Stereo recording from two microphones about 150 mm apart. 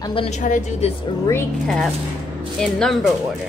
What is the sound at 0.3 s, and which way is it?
Speech, 55° left (ahead or behind).